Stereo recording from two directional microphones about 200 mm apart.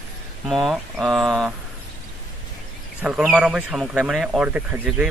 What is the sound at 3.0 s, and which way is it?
Speech, 5° right (ahead or behind).